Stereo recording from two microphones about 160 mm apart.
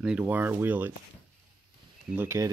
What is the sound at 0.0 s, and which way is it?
Speech, 10° right (ahead or behind).